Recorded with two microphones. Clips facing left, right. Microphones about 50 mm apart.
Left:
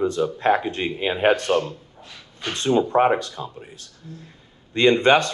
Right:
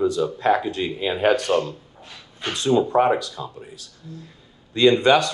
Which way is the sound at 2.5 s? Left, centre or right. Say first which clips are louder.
Right 1 dB; left.